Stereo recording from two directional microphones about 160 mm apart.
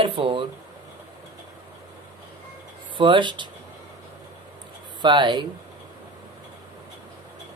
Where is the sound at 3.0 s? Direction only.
30° right (ahead or behind).